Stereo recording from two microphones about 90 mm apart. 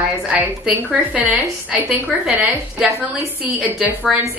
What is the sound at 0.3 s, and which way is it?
A woman's voice, 15° right (ahead or behind).